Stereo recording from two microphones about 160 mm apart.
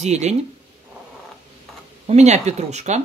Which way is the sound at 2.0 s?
45° right (ahead or behind).